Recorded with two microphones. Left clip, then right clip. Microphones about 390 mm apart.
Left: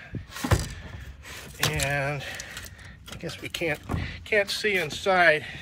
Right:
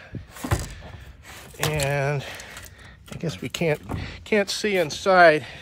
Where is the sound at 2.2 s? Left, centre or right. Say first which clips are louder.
Right 1 dB; centre.